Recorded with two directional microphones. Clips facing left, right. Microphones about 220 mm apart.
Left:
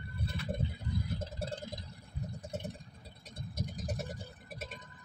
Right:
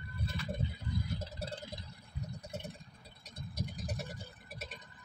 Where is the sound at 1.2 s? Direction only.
50° left (ahead or behind).